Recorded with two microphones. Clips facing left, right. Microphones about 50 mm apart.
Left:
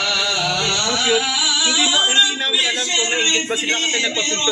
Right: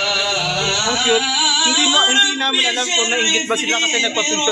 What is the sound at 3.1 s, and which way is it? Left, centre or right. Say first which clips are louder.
Yodeling: even; centre.